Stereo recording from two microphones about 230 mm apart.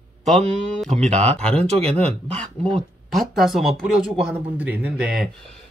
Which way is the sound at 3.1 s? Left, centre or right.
Centre.